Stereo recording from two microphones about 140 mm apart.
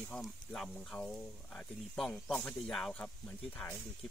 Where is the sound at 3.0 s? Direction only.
10° left (ahead or behind).